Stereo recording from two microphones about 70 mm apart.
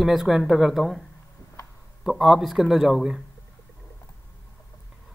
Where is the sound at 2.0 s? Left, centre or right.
Centre.